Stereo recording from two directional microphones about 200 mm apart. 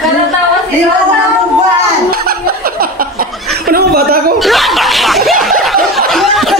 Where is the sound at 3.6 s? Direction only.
50° right (ahead or behind).